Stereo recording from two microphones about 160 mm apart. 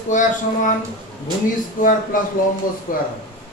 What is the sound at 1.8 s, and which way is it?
Speech, 60° left (ahead or behind).